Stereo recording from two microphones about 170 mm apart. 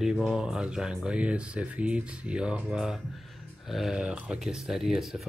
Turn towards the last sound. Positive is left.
turn(degrees=0)  # may be behind; listen again after turning